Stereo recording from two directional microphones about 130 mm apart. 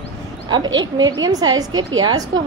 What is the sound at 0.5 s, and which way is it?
A woman's voice, 35° right (ahead or behind).